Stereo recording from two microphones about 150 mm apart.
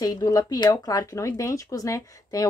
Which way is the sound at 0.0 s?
25° left (ahead or behind).